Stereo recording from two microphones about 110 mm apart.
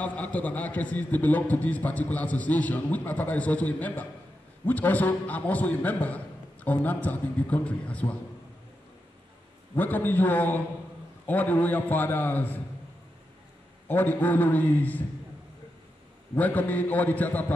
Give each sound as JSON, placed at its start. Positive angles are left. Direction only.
{"t": 0.0, "sound": "a man's voice", "side_deg": 15}
{"t": 9.8, "sound": "a man's voice", "side_deg": 15}
{"t": 13.8, "sound": "a man's voice", "side_deg": 15}
{"t": 16.3, "sound": "a man's voice", "side_deg": 15}